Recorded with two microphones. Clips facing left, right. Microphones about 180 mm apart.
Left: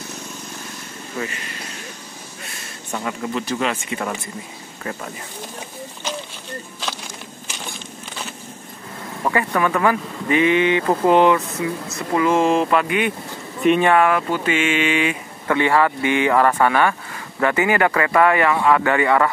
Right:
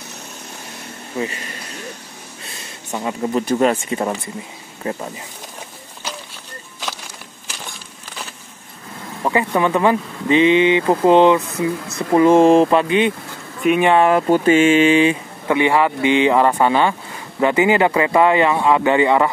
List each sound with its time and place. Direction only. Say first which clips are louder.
2.9 s speech: right 2 dB; 25° right (ahead or behind)
3.3 s speech: right 8 dB; 40° right (ahead or behind)
9.2 s speech: right 2 dB; 20° right (ahead or behind); by 12.6 s 35° right (ahead or behind)
12.6 s speech: right 4 dB; 25° right (ahead or behind)
14.0 s speech: right 6 dB; 35° right (ahead or behind)
15.4 s speech: right 2 dB; 15° right (ahead or behind)